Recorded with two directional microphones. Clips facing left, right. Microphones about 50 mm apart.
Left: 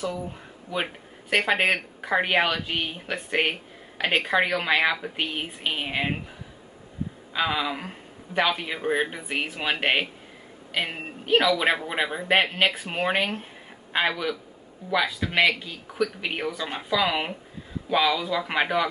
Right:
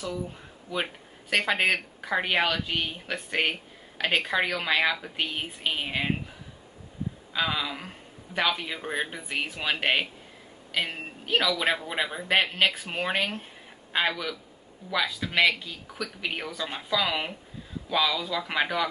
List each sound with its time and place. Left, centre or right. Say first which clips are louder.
0.7 s speech: left 2 dB; centre
7.3 s speech: left 3 dB; centre